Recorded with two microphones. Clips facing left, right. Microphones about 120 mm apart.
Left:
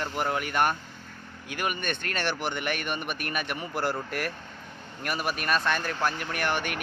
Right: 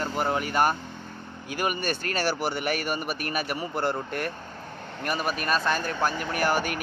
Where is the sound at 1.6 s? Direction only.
35° right (ahead or behind).